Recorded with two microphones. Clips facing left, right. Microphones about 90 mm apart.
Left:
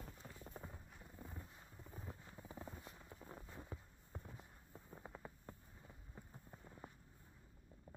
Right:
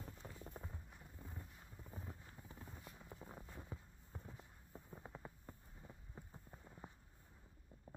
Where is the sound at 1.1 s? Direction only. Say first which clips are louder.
Left 2 dB; 5° left (ahead or behind).